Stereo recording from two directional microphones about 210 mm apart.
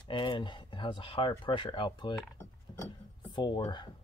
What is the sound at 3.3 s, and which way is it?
Speech, 20° left (ahead or behind).